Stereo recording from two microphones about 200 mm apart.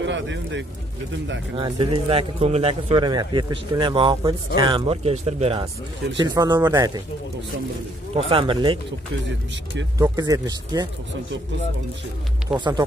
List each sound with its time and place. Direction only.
0.0 s speech: 65° right (ahead or behind)
1.6 s speech: 25° right (ahead or behind)
8.3 s speech: 25° right (ahead or behind)
9.9 s speech: 15° right (ahead or behind)
12.4 s speech: 20° right (ahead or behind)